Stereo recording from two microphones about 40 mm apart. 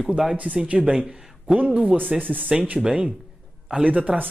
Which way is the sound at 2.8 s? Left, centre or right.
Centre.